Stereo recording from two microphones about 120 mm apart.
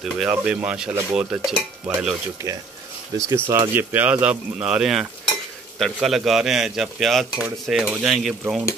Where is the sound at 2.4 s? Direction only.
25° right (ahead or behind).